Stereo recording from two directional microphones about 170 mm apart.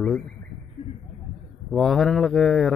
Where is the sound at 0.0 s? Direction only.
5° left (ahead or behind).